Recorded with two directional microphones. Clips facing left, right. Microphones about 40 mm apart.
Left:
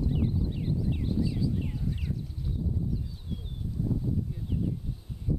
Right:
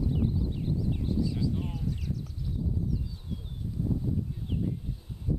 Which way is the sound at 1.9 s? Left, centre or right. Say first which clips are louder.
Even; left.